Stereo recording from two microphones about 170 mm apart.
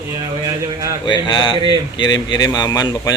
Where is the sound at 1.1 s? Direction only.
25° left (ahead or behind).